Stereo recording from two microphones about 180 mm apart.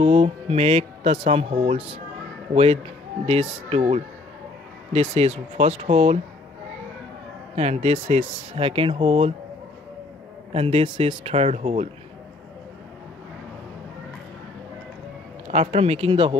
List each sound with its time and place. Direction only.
0.0 s speech: 35° right (ahead or behind)
7.5 s speech: 40° right (ahead or behind)
10.5 s speech: 35° right (ahead or behind)
15.5 s speech: 35° right (ahead or behind)